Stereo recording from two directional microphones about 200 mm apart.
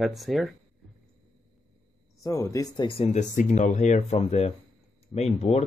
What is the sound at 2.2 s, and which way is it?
Speech, 15° left (ahead or behind).